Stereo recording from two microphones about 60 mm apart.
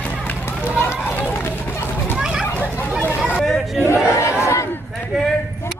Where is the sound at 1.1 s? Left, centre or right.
Left.